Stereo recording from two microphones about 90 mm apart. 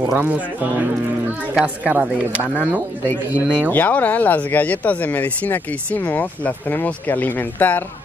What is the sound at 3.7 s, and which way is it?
Speech, 20° left (ahead or behind).